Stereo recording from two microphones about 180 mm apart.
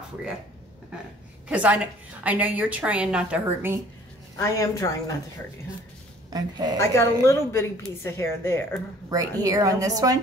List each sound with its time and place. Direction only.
1.5 s speech: 10° right (ahead or behind)
4.4 s a woman's voice: 15° left (ahead or behind)
6.3 s a woman's voice: 20° right (ahead or behind)
6.8 s a woman's voice: 15° left (ahead or behind)
9.4 s a woman's voice: 20° right (ahead or behind)